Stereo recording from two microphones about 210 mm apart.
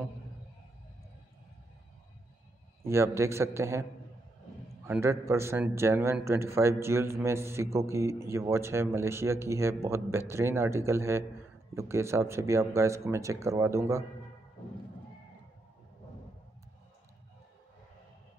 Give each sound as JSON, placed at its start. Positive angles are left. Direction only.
{"t": 2.8, "sound": "a man's voice", "side_deg": -15}
{"t": 4.8, "sound": "a man's voice", "side_deg": -10}